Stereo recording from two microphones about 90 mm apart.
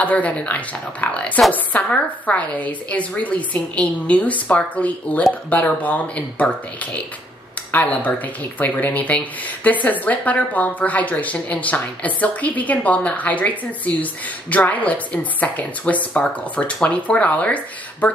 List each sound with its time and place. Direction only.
0.0 s a woman's voice: 15° left (ahead or behind)